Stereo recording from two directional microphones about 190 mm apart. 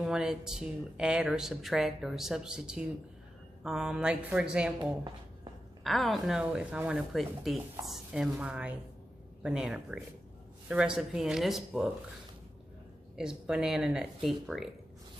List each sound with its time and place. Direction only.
0.0 s speech: centre (ahead or behind)
4.7 s speech: 25° right (ahead or behind)
5.9 s speech: centre (ahead or behind)
13.1 s speech: 5° right (ahead or behind)